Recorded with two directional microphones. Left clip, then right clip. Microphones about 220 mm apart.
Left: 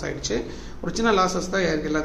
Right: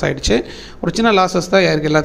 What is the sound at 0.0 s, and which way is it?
Speech, 40° right (ahead or behind).